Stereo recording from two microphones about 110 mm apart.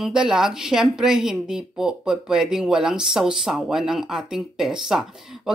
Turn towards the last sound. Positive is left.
turn(degrees=-5)  # may be behind; listen again after turning